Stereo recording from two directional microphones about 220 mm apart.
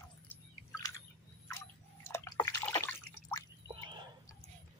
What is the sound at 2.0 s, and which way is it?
Drip, 10° left (ahead or behind).